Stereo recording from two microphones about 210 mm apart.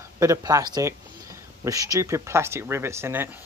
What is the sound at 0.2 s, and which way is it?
Speech, 15° right (ahead or behind).